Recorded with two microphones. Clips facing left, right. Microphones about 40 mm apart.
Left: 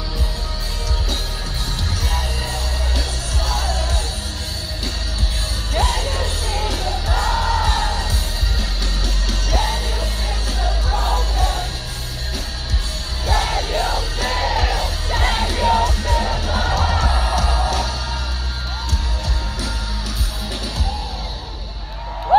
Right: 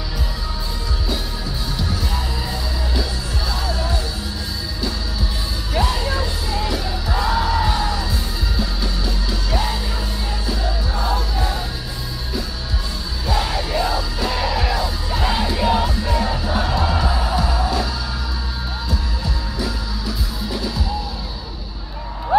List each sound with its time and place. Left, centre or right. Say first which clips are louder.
1.8 s music: even; left
6.7 s music: even; left
10.9 s music: left 1 dB; left
13.3 s music: left 1 dB; left
15.1 s music: even; left